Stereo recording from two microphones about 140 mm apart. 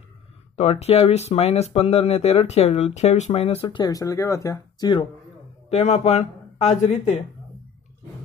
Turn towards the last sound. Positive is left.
turn(degrees=55)  # may be behind; listen again after turning